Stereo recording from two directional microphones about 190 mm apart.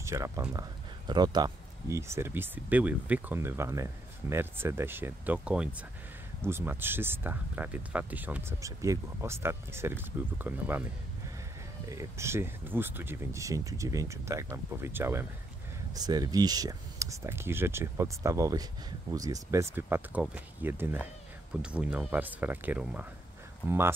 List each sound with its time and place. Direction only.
0.0 s speech: 15° right (ahead or behind)
11.9 s speech: 15° right (ahead or behind)